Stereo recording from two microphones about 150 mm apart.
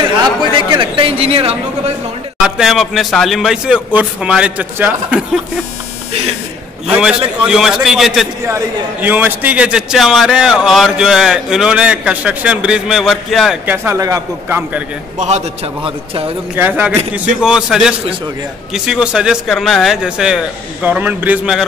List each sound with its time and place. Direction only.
0.7 s a sound: 35° right (ahead or behind)
2.4 s a man's voice: 5° right (ahead or behind)
6.9 s a man's voice: 5° right (ahead or behind)
8.5 s a man's voice: 15° right (ahead or behind)
13.7 s speech: 20° right (ahead or behind)
15.1 s a man's voice: 50° right (ahead or behind)
16.5 s a man's voice: 10° right (ahead or behind)